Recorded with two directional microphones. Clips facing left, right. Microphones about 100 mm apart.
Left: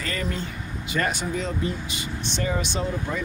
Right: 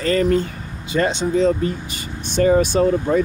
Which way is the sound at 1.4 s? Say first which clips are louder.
Right 10 dB; 45° right (ahead or behind).